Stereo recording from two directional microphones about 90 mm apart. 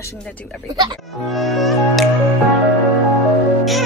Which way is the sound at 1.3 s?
Centre (ahead or behind).